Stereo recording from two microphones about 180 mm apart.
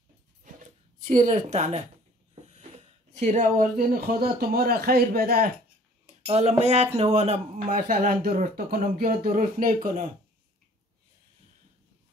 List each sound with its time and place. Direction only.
0.9 s a woman's voice: 45° right (ahead or behind)
6.2 s speech: 35° right (ahead or behind)